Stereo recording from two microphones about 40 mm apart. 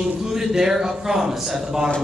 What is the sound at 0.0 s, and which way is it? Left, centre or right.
Speech, centre.